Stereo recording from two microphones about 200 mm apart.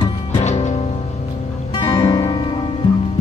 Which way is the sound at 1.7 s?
20° left (ahead or behind).